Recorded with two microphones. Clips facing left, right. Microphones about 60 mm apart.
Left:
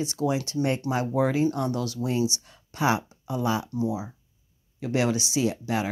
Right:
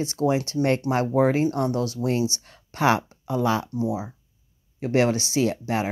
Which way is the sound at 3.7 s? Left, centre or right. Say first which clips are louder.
Right 2 dB; right.